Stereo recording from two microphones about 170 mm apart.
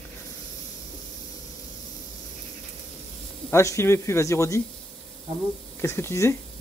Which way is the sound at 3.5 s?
15° left (ahead or behind).